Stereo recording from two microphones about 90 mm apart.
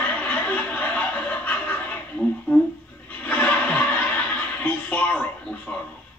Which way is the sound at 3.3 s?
15° left (ahead or behind).